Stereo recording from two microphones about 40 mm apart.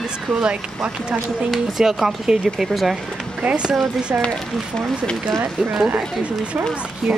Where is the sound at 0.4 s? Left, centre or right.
Right.